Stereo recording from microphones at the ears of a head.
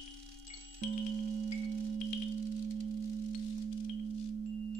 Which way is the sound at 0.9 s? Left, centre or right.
Right.